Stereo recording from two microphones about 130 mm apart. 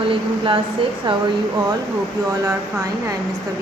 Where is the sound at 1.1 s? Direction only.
40° right (ahead or behind).